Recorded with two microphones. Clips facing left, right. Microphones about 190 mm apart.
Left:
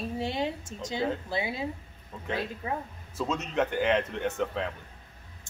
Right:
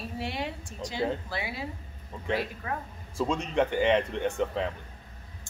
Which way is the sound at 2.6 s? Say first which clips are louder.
Left 2 dB; 20° left (ahead or behind).